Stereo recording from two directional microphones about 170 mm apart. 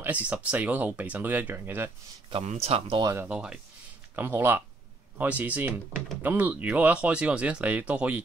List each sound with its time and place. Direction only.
0.0 s speech: 10° right (ahead or behind)
2.3 s speech: 35° right (ahead or behind)
3.0 s speech: 20° right (ahead or behind)
3.3 s speech: 5° right (ahead or behind)